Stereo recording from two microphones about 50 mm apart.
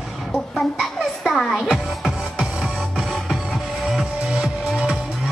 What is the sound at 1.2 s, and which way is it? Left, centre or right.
Music, centre.